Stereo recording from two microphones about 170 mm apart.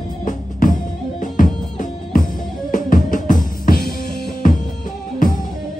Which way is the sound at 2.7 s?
50° left (ahead or behind).